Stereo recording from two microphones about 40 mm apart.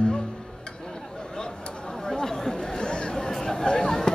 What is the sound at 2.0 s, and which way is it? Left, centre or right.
Chatter, centre.